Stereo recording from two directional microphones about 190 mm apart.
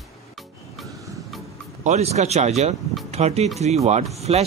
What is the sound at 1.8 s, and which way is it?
Speech, 35° right (ahead or behind).